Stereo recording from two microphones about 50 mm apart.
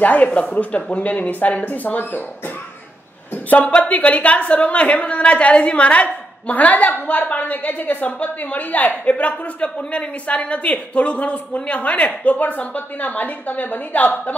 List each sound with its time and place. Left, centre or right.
0.0 s a woman's voice: left